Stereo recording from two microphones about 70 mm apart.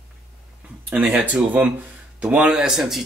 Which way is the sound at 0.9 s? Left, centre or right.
Centre.